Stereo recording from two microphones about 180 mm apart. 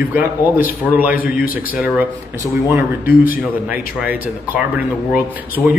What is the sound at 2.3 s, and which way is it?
Speech, 15° right (ahead or behind).